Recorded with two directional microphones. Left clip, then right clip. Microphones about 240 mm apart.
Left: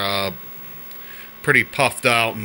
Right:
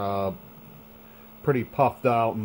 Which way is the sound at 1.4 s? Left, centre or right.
Centre.